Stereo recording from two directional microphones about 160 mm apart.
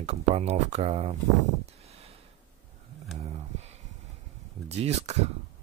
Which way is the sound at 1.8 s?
40° right (ahead or behind).